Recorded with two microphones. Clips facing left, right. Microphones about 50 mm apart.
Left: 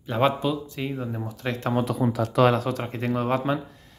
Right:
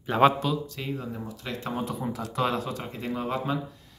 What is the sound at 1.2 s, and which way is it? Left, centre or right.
Speech, left.